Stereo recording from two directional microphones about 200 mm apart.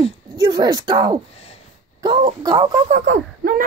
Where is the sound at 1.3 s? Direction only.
30° left (ahead or behind).